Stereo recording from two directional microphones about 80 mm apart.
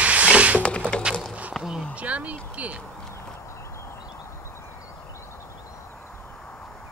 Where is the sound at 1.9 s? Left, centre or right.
Centre.